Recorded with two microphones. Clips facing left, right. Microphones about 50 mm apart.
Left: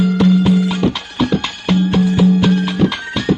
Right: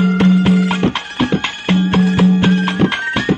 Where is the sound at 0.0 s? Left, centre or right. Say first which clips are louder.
Even; right.